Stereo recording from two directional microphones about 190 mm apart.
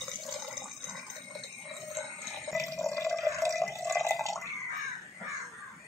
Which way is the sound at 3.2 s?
15° right (ahead or behind).